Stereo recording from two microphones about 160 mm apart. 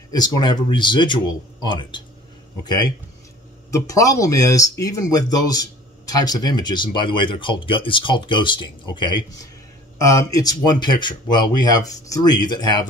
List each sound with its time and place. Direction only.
0.1 s speech: 25° left (ahead or behind)